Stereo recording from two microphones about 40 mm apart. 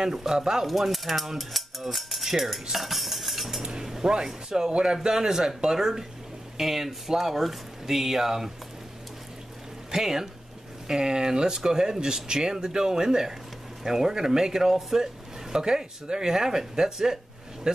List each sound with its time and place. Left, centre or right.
0.0 s speech: centre
0.7 s a sound: centre
2.7 s cutlery: centre
3.6 s speech: centre
9.8 s speech: centre